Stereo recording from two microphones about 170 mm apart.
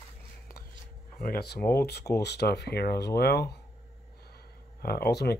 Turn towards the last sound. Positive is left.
turn(degrees=70)  # may be behind; listen again after turning